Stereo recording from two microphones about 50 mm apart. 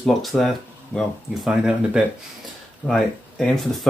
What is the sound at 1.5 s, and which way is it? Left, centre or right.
Speech, centre.